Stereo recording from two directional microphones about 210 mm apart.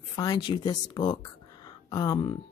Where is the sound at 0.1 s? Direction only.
20° left (ahead or behind).